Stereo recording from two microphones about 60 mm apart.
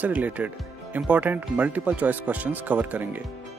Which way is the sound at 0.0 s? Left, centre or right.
Right.